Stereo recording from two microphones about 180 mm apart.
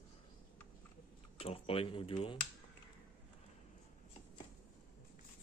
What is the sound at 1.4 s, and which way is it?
Speech, 30° left (ahead or behind).